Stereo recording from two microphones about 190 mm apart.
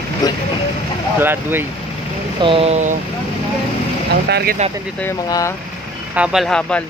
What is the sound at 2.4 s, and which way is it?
Speech, 30° right (ahead or behind).